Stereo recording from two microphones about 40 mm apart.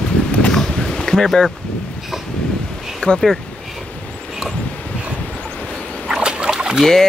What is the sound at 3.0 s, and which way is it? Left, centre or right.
Speech, left.